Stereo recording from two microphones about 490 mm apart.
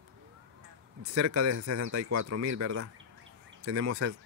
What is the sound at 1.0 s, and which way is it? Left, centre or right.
Speech, right.